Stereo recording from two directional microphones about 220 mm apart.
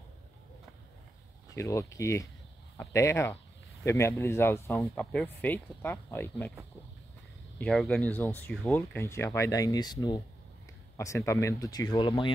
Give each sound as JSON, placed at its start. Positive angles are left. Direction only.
{"t": 1.5, "sound": "speech", "side_deg": 15}
{"t": 7.5, "sound": "speech", "side_deg": 5}